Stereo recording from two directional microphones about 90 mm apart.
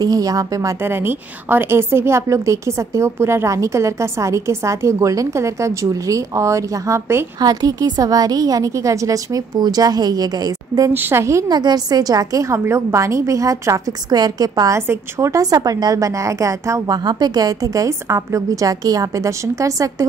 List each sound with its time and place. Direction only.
0.0 s a woman's voice: 40° right (ahead or behind)
0.8 s a woman's voice: 25° right (ahead or behind)
7.3 s a woman's voice: 45° right (ahead or behind)
10.9 s speech: 25° right (ahead or behind)
11.4 s a woman's voice: 50° right (ahead or behind)